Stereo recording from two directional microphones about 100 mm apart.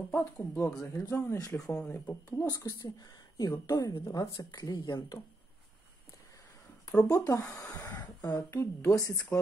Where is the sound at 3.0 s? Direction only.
40° left (ahead or behind).